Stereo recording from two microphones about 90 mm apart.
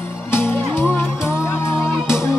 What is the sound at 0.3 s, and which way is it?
Music, 25° left (ahead or behind).